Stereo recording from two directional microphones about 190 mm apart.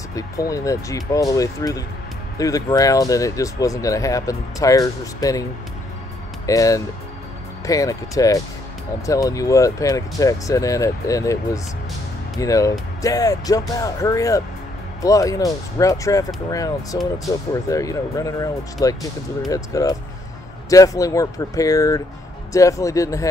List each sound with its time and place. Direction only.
0.1 s speech: 15° left (ahead or behind)
6.4 s speech: 15° left (ahead or behind)